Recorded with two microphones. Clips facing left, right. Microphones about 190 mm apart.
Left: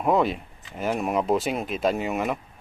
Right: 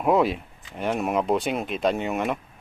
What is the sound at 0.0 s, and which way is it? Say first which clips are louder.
Speech: right 1 dB; centre (ahead or behind).